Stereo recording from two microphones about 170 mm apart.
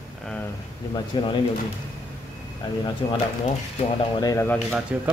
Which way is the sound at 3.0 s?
25° left (ahead or behind).